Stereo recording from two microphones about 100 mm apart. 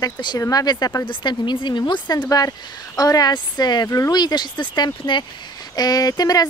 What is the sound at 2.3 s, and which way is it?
Speech, 35° left (ahead or behind).